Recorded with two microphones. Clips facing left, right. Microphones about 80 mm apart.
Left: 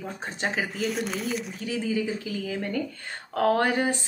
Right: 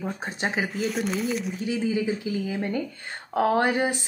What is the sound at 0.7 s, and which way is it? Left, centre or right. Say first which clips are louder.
Speech: right 2 dB; centre.